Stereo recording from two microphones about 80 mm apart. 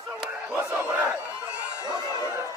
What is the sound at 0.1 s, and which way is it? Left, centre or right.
Crowd, right.